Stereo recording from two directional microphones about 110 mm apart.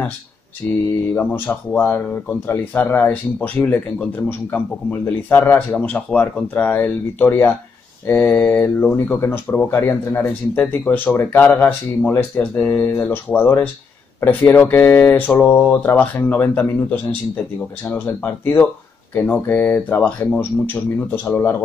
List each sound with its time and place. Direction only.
0.6 s speech: 20° left (ahead or behind)